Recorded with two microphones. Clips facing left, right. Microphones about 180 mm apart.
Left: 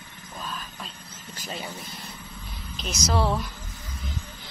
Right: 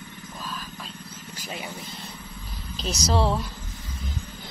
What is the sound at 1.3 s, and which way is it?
Speech, 10° right (ahead or behind).